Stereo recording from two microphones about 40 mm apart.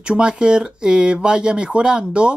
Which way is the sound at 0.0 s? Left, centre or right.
Right.